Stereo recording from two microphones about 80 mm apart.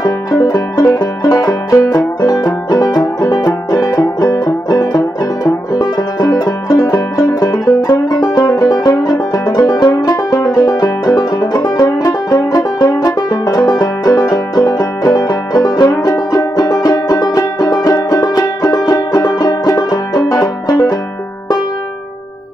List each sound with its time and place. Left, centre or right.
0.5 s music: left
9.3 s banjo: left
18.3 s music: left